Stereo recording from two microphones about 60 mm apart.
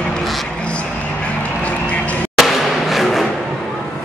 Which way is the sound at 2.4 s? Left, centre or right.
Centre.